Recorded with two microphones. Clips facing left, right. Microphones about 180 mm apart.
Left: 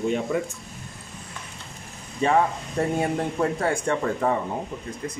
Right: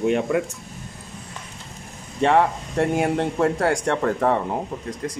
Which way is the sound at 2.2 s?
75° right (ahead or behind).